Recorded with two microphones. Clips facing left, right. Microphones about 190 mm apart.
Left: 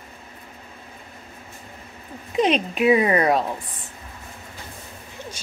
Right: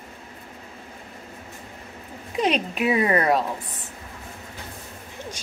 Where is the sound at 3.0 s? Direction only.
10° left (ahead or behind).